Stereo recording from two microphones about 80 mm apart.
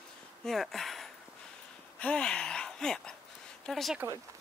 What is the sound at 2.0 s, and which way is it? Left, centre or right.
Speech, centre.